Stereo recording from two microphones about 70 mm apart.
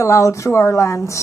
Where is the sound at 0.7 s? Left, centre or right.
Left.